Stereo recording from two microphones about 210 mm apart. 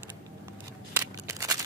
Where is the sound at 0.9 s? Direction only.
15° right (ahead or behind).